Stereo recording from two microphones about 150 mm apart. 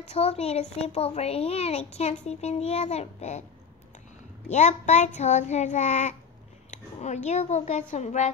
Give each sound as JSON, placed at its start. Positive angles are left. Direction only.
{"t": 0.1, "sound": "a child's voice", "side_deg": 40}
{"t": 4.5, "sound": "a child's voice", "side_deg": 50}